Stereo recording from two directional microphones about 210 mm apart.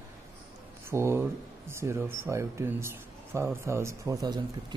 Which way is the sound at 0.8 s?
10° right (ahead or behind).